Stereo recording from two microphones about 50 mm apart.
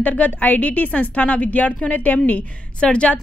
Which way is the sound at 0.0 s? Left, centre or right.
Left.